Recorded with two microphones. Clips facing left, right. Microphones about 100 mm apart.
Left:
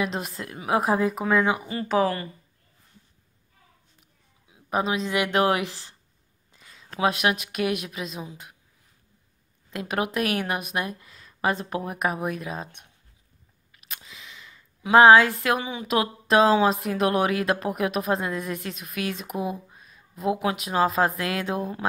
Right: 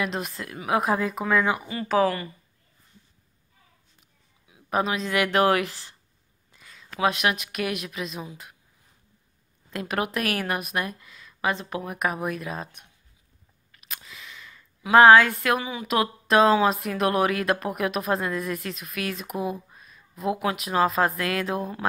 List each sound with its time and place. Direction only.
0.2 s speech: 30° left (ahead or behind)
4.6 s a woman's voice: 10° left (ahead or behind); by 8.1 s 30° left (ahead or behind)
9.8 s speech: 20° left (ahead or behind)
13.8 s a sound: 20° left (ahead or behind)
14.8 s speech: 20° left (ahead or behind)
19.1 s speech: centre (ahead or behind)
20.2 s speech: 25° left (ahead or behind)